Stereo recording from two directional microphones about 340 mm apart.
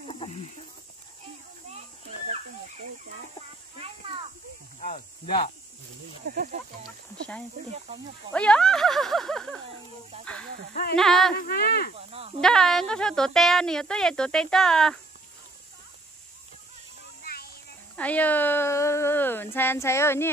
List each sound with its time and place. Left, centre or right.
0.0 s snake: centre
4.7 s speech: left
6.2 s speech: right
8.3 s a woman's voice: centre
10.1 s speech: centre
10.7 s speech: left
11.0 s a woman's voice: centre
11.3 s speech: left
12.1 s speech: centre
12.4 s a woman's voice: centre
17.2 s music: left
17.9 s speech: centre